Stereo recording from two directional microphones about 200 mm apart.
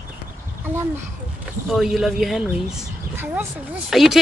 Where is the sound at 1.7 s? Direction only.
Centre (ahead or behind).